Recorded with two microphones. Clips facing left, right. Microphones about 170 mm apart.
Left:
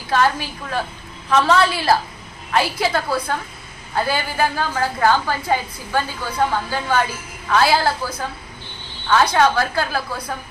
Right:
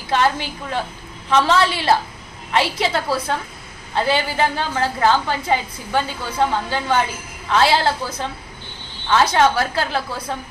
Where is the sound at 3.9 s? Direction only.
25° right (ahead or behind).